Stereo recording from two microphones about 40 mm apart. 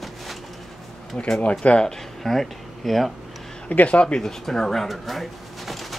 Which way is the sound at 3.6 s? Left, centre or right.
Left.